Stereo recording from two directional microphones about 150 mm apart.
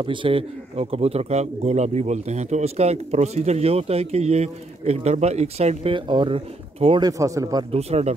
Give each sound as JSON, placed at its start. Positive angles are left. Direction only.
{"t": 0.0, "sound": "speech", "side_deg": -35}
{"t": 7.1, "sound": "speech", "side_deg": -20}
{"t": 7.7, "sound": "speech", "side_deg": -45}